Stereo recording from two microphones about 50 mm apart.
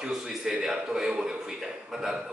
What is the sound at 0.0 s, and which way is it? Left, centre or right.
A man's voice, centre.